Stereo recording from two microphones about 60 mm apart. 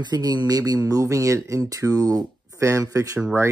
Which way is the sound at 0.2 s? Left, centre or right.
Right.